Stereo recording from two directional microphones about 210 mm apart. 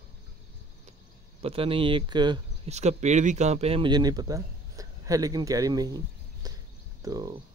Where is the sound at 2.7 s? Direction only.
30° right (ahead or behind).